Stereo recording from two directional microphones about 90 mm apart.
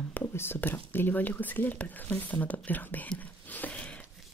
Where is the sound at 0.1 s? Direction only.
25° left (ahead or behind).